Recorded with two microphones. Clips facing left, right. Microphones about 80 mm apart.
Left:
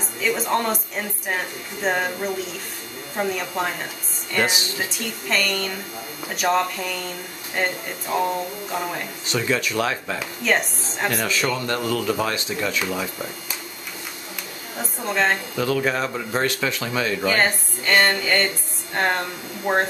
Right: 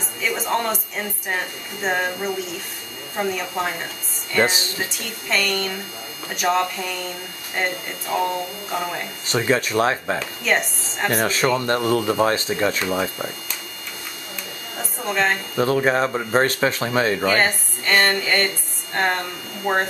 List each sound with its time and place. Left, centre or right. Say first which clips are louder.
0.2 s a woman's voice: left 1 dB; centre
4.4 s speech: right 3 dB; right
5.3 s a woman's voice: right 2 dB; centre
9.3 s speech: right 3 dB; right
10.4 s a woman's voice: left 2 dB; centre
11.1 s speech: right 4 dB; right
14.8 s a woman's voice: even; centre
15.5 s speech: right 3 dB; right
17.2 s a woman's voice: right 1 dB; centre